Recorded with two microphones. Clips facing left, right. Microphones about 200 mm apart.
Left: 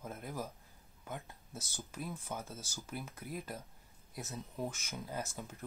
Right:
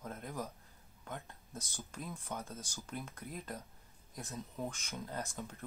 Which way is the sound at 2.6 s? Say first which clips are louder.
Even; 15° right (ahead or behind).